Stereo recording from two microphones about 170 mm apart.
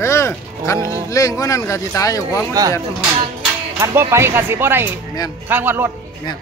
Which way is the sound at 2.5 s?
20° right (ahead or behind).